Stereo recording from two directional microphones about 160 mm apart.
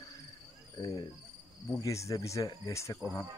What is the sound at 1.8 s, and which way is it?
Speech, 20° left (ahead or behind).